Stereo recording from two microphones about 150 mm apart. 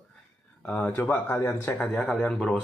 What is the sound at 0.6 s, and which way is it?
Speech, 10° left (ahead or behind).